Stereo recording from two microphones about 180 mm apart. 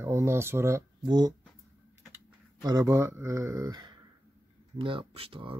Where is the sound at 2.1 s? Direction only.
20° right (ahead or behind).